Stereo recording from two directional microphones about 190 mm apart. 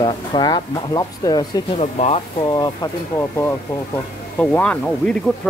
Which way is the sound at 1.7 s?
35° left (ahead or behind).